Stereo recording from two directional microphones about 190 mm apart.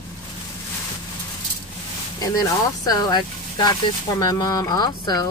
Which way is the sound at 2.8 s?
20° left (ahead or behind).